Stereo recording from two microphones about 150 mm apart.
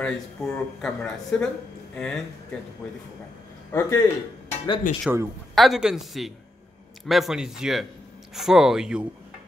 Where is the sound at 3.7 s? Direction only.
15° left (ahead or behind).